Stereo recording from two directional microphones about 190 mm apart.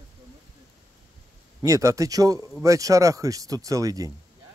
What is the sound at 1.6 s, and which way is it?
Speech, 15° right (ahead or behind).